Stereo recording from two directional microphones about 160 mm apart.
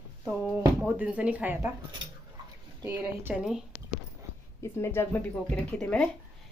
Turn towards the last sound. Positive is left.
turn(degrees=10)  # may be behind; listen again after turning